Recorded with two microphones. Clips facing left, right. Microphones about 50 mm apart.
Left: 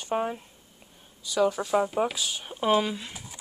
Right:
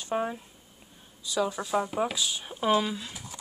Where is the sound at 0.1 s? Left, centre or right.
Centre.